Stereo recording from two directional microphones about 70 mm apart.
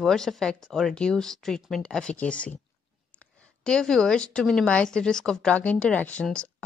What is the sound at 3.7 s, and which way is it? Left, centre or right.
Speech, centre.